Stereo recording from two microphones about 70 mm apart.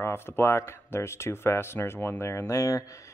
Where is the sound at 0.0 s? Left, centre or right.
Left.